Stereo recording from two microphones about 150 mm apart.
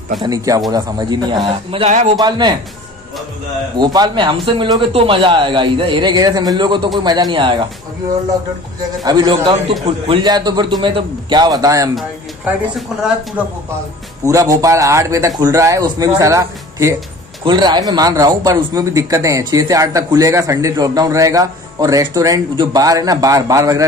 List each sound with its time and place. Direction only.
0.2 s speech: 25° right (ahead or behind)
1.9 s a man's voice: 50° right (ahead or behind)
2.1 s speech: 30° right (ahead or behind)
3.7 s a man's voice: 30° right (ahead or behind)
9.0 s speech: 30° right (ahead or behind)
14.2 s speech: 20° right (ahead or behind)